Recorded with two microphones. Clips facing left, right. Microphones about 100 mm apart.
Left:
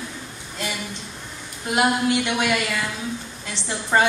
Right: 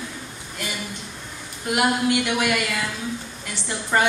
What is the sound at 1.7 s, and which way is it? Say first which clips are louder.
A woman's voice: left 1 dB; 25° left (ahead or behind).